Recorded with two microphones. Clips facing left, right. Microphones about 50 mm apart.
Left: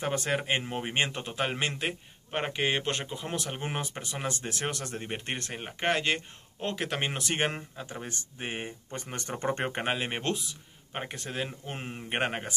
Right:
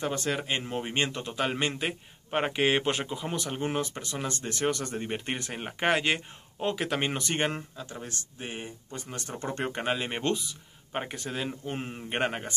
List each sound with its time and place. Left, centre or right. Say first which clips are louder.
0.0 s speech: even; centre
1.6 s a man's voice: right 1 dB; centre
3.5 s speech: right 4 dB; centre
6.7 s speech: right 2 dB; centre
7.8 s speech: left 1 dB; left
8.4 s speech: left 3 dB; left; by 10.2 s centre
10.9 s speech: right 3 dB; centre
12.2 s speech: right 1 dB; centre